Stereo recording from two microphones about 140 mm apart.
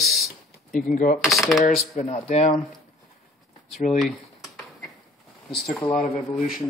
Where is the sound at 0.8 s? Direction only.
70° left (ahead or behind).